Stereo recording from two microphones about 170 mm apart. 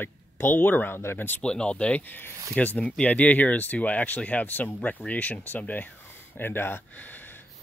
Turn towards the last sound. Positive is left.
turn(degrees=10)  # may be behind; listen again after turning